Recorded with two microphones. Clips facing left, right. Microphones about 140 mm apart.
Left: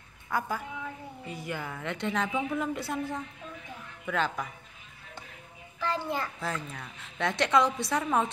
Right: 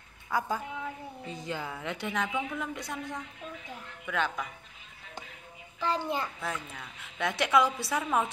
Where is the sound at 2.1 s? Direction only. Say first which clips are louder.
Left 3 dB; centre (ahead or behind).